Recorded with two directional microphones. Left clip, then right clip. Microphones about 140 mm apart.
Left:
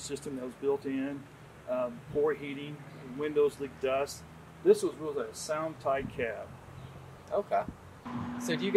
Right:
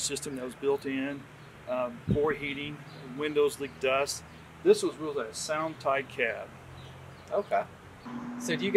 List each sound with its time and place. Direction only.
0.0 s speech: 15° right (ahead or behind)
7.2 s speech: 5° left (ahead or behind)